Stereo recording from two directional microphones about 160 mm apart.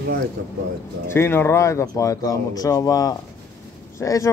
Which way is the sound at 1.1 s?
15° left (ahead or behind).